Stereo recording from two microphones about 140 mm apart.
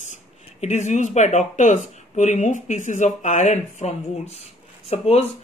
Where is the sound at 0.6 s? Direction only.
55° left (ahead or behind).